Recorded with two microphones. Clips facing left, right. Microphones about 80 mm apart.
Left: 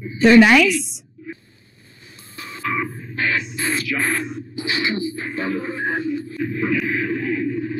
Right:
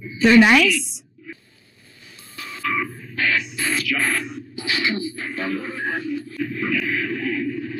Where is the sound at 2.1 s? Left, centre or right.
Left.